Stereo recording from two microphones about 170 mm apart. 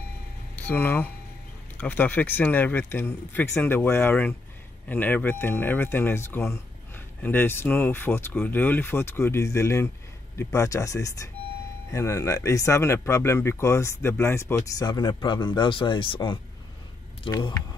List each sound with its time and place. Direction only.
0.6 s speech: 10° left (ahead or behind); by 17.6 s 25° left (ahead or behind)